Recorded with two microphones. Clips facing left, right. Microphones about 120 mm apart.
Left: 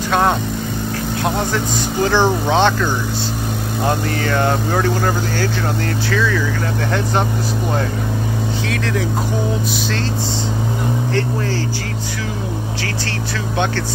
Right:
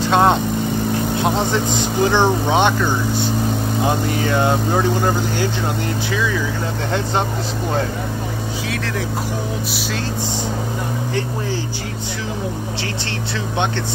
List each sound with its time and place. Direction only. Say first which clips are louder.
0.1 s vehicle: right 2 dB; 20° right (ahead or behind)
1.2 s speech: left 1 dB; 20° right (ahead or behind)